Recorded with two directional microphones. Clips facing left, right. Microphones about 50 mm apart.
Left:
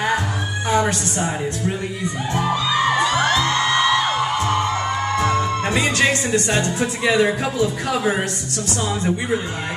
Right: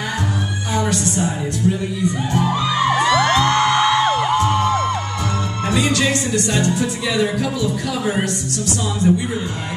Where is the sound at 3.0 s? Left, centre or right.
Right.